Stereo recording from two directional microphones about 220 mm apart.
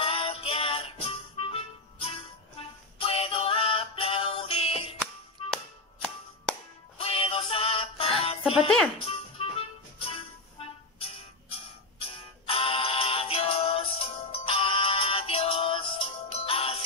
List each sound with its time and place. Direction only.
0.0 s music: 25° left (ahead or behind)
4.9 s music: centre (ahead or behind)
7.0 s music: 25° left (ahead or behind)